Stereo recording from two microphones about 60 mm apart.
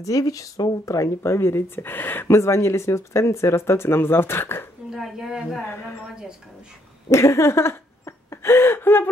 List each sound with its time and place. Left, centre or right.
0.0 s speech: left
1.2 s speech: left
2.2 s speech: left
4.9 s a woman's voice: centre
7.1 s a sound: left